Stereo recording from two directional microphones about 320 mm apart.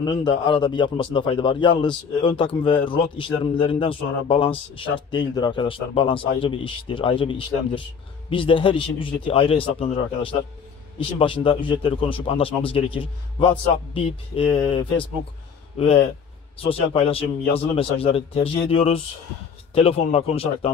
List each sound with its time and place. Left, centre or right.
0.0 s a man's voice: centre